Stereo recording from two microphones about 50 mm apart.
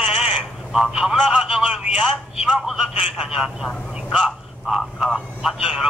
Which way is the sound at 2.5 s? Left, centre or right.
Centre.